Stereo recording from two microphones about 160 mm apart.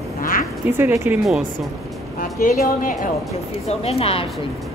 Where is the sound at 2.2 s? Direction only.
55° left (ahead or behind).